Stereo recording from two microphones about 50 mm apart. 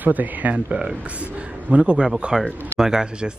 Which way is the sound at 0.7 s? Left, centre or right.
Centre.